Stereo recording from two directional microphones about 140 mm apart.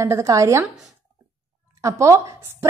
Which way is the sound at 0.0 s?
20° right (ahead or behind).